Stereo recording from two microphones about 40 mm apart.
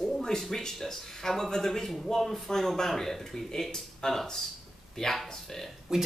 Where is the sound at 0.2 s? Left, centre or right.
Centre.